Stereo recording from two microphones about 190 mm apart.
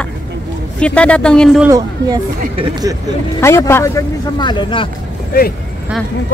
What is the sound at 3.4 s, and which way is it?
Speech, 15° left (ahead or behind).